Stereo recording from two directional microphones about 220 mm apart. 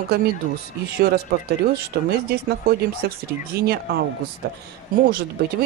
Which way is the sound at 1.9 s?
45° right (ahead or behind).